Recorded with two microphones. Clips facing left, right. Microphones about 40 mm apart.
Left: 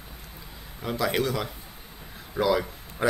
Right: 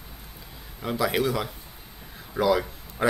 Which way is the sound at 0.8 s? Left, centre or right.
Centre.